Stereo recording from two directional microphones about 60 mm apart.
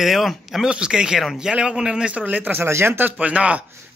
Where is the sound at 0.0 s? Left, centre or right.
Centre.